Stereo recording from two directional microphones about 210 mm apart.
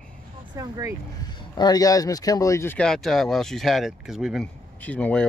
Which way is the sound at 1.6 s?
15° left (ahead or behind).